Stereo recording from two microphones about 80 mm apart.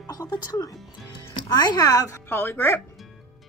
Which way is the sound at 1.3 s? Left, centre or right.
Left.